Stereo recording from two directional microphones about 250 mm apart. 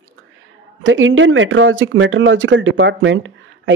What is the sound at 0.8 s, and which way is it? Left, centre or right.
Speech, right.